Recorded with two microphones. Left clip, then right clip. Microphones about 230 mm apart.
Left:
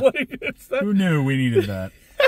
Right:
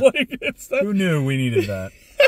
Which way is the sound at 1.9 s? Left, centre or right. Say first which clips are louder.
Right 4 dB; centre.